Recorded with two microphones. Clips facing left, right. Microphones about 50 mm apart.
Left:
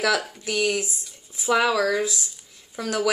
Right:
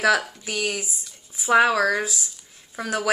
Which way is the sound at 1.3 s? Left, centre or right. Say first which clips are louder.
Right 3 dB; right.